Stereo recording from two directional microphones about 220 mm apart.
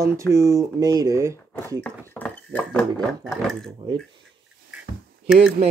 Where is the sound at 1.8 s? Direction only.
10° left (ahead or behind).